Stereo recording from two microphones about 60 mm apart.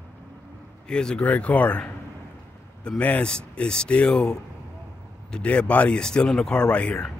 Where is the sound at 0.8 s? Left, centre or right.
Centre.